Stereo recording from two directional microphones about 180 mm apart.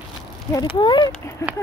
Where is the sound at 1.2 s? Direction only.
15° left (ahead or behind).